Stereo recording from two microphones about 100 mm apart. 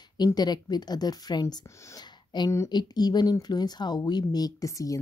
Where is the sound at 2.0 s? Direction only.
45° left (ahead or behind).